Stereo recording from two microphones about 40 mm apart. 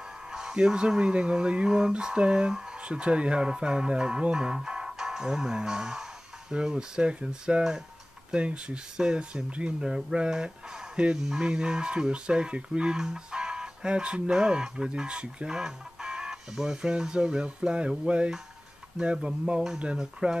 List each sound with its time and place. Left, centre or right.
0.3 s speech: centre
4.6 s music: centre
6.5 s speech: centre
9.8 s speech: centre